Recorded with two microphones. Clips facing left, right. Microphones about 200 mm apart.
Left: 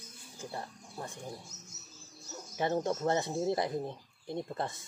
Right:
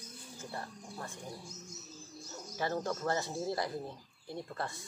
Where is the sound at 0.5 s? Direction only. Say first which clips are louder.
Left 1 dB; 15° left (ahead or behind).